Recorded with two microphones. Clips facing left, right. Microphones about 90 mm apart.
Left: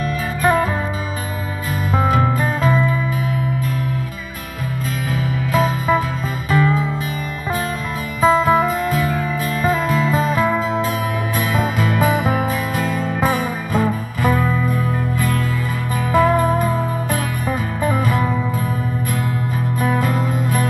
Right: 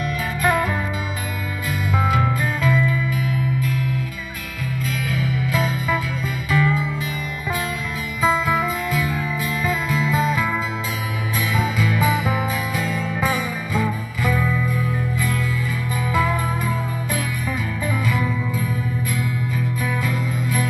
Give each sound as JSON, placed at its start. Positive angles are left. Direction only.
{"t": 0.0, "sound": "music", "side_deg": 35}
{"t": 1.9, "sound": "music", "side_deg": 40}
{"t": 5.1, "sound": "music", "side_deg": 45}
{"t": 8.2, "sound": "music", "side_deg": 45}
{"t": 19.8, "sound": "music", "side_deg": 45}